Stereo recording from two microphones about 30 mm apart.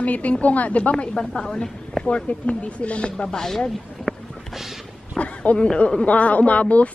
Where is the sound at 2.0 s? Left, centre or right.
Left.